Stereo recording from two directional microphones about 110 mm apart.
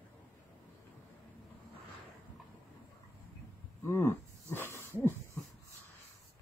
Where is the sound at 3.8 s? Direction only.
25° left (ahead or behind).